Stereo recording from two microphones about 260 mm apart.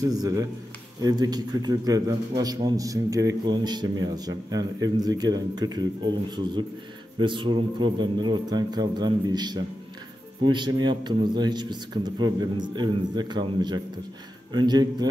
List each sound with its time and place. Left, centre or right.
0.1 s a man's voice: centre
7.2 s a man's voice: centre